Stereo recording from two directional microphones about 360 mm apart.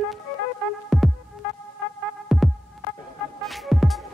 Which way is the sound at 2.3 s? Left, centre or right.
Centre.